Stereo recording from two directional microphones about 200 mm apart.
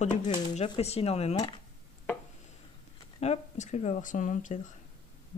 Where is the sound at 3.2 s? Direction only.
35° left (ahead or behind).